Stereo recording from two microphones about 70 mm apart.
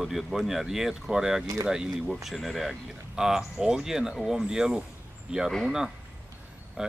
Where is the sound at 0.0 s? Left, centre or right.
Centre.